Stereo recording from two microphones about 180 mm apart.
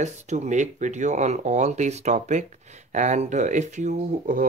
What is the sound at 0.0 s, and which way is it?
Speech, 40° right (ahead or behind).